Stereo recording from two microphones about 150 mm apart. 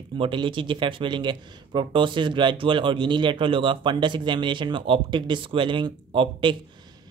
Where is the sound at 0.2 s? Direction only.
35° right (ahead or behind).